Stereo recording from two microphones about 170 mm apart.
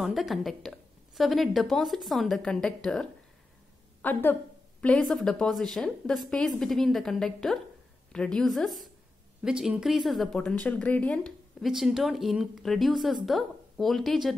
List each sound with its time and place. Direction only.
0.0 s a woman's voice: centre (ahead or behind)